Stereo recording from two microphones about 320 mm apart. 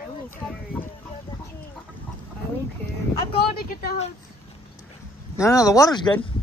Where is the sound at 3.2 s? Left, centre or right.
Centre.